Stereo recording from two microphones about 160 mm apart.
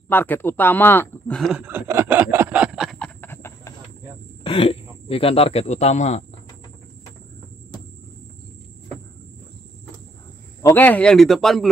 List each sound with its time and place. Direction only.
0.1 s speech: 10° left (ahead or behind)
1.7 s a sound: 15° right (ahead or behind)
3.2 s train: 15° left (ahead or behind)
4.4 s speech: 35° left (ahead or behind)
10.6 s a man's voice: 10° left (ahead or behind)